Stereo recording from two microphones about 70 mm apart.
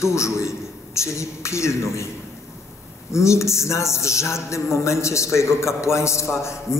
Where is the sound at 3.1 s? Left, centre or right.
Left.